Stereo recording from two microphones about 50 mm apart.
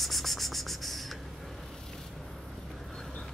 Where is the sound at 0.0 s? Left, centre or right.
Centre.